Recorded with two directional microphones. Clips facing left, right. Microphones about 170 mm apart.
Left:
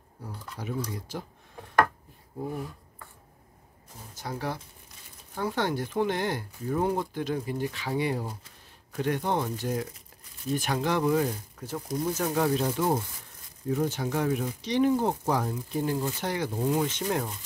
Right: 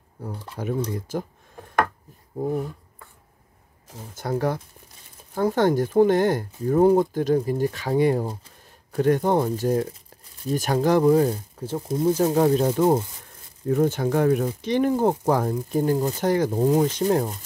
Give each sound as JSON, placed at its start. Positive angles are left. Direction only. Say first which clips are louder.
{"t": 0.6, "sound": "speech", "louder": "right 7 dB", "side_deg": -55}
{"t": 4.1, "sound": "speech", "louder": "right 9 dB", "side_deg": -50}
{"t": 12.5, "sound": "speech", "louder": "right 7 dB", "side_deg": -40}